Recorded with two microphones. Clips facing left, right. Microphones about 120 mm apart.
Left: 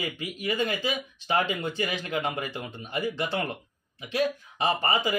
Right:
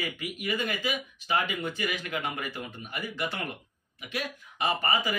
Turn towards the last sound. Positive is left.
turn(degrees=25)  # may be behind; listen again after turning